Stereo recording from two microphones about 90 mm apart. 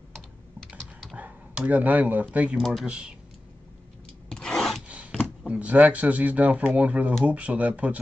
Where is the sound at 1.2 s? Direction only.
15° right (ahead or behind).